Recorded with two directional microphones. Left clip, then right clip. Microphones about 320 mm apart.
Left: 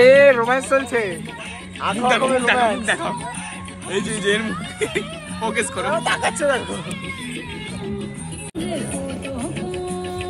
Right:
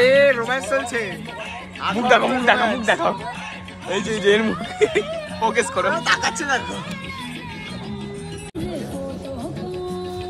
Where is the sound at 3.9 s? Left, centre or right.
Right.